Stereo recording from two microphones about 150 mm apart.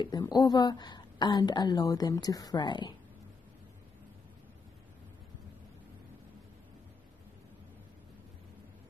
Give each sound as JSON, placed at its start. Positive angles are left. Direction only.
{"t": 0.0, "sound": "a woman's voice", "side_deg": 25}